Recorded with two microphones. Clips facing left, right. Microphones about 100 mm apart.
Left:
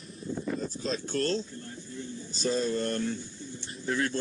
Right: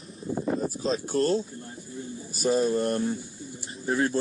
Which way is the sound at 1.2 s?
15° right (ahead or behind).